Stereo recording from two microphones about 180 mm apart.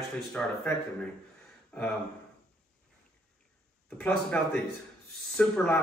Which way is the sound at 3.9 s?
5° left (ahead or behind).